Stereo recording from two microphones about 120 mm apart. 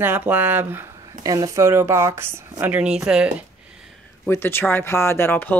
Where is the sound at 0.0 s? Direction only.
15° right (ahead or behind).